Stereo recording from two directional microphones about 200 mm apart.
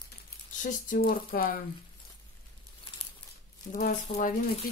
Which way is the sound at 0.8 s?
45° left (ahead or behind).